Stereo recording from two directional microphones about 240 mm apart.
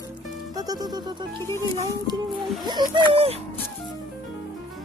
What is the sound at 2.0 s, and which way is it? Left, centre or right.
Speech, centre.